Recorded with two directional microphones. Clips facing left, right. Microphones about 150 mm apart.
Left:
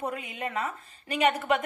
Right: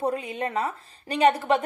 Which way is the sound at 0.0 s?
35° right (ahead or behind).